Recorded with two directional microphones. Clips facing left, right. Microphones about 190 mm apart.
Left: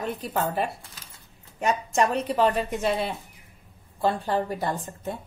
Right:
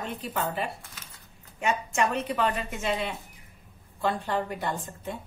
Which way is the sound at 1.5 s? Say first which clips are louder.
Left 3 dB; 35° left (ahead or behind).